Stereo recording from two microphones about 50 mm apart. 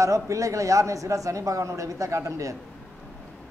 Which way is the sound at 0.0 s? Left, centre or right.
Right.